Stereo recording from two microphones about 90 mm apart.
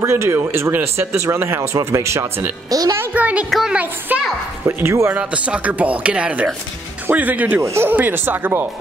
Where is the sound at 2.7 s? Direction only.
45° right (ahead or behind).